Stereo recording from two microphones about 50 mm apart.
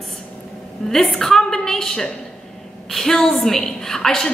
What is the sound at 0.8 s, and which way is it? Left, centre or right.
A woman's voice, centre.